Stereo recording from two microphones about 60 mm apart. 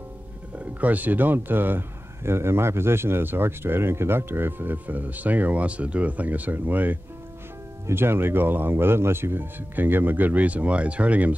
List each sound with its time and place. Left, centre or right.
0.7 s speech: right
7.8 s speech: right